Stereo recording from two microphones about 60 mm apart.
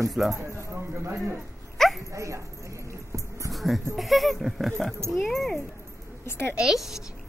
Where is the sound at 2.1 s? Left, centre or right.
Right.